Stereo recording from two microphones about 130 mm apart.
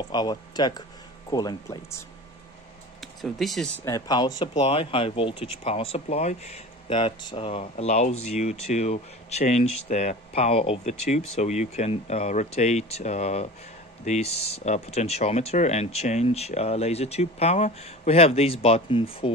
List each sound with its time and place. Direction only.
0.0 s speech: 30° left (ahead or behind)
3.0 s speech: centre (ahead or behind)
3.8 s speech: 30° left (ahead or behind)
4.6 s speech: 45° left (ahead or behind)
6.9 s speech: 40° left (ahead or behind)
7.7 s speech: 65° left (ahead or behind); by 19.3 s 45° left (ahead or behind)